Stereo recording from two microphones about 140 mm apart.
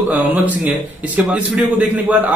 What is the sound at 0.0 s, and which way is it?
Speech, 10° right (ahead or behind).